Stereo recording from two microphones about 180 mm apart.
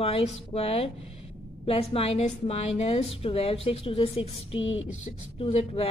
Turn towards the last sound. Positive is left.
turn(degrees=35)  # may be behind; listen again after turning